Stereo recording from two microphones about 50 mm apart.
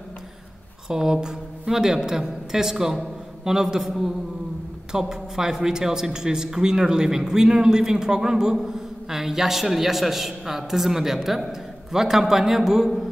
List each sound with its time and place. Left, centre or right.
0.8 s a man's voice: centre